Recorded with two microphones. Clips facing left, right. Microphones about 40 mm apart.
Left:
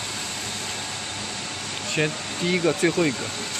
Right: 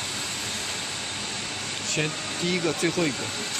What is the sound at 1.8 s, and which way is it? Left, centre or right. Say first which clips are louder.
Speech: left 4 dB; centre.